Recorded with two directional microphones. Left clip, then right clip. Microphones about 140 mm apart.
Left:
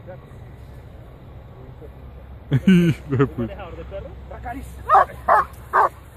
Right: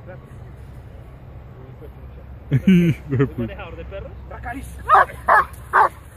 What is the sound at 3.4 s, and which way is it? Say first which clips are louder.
Speech: even; 5° right (ahead or behind).